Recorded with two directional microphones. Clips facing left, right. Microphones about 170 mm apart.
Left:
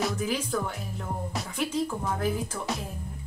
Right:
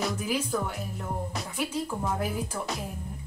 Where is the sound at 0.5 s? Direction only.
10° right (ahead or behind).